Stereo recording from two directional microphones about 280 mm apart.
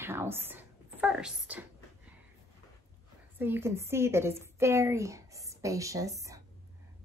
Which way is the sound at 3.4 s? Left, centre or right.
Centre.